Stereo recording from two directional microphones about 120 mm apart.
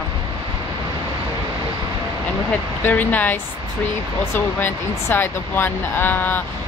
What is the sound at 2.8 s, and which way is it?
Speech, 15° left (ahead or behind).